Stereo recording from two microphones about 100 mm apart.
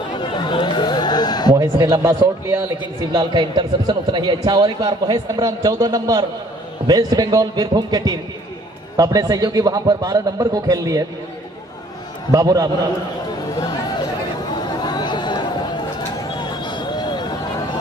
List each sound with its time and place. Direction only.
0.1 s a sound: 50° left (ahead or behind)
1.5 s a man's voice: 35° right (ahead or behind)
3.1 s a man's voice: 45° right (ahead or behind)
12.3 s a man's voice: 35° right (ahead or behind)
13.6 s chatter: 45° left (ahead or behind)
16.3 s basketball bounce: 50° left (ahead or behind)